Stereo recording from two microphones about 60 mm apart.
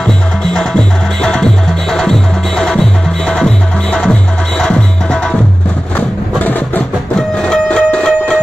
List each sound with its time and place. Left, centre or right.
0.0 s music: centre
5.9 s music: left
7.2 s music: centre